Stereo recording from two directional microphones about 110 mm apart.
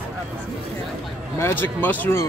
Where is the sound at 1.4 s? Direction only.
20° left (ahead or behind).